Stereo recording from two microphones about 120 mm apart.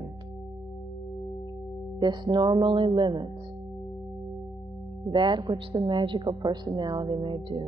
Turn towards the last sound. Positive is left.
turn(degrees=-45)  # may be behind; listen again after turning